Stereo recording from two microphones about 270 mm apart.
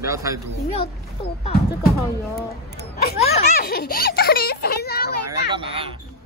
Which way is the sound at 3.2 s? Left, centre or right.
Left.